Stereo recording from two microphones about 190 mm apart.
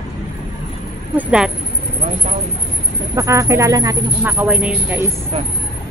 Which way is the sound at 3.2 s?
15° right (ahead or behind).